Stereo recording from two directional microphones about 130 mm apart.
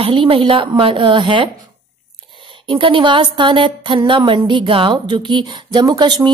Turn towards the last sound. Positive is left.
turn(degrees=-35)  # may be behind; listen again after turning